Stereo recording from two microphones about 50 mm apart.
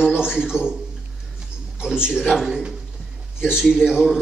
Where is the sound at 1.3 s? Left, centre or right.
Centre.